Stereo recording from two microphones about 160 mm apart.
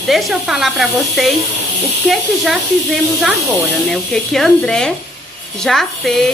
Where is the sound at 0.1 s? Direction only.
Centre (ahead or behind).